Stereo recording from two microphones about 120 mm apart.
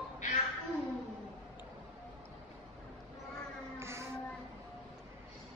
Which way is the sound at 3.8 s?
20° right (ahead or behind).